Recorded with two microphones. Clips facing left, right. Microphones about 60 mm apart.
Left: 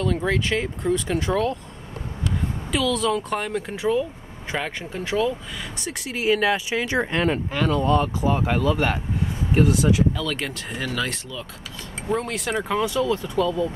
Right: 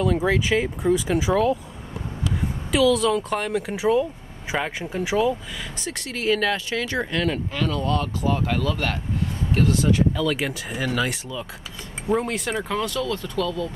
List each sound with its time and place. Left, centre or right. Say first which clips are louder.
0.0 s speech: right 2 dB; centre
2.7 s speech: right 4 dB; centre
5.8 s speech: left 2 dB; centre
10.1 s speech: right 4 dB; centre
12.5 s speech: left 6 dB; centre